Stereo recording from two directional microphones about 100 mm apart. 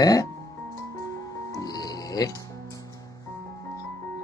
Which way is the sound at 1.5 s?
35° left (ahead or behind).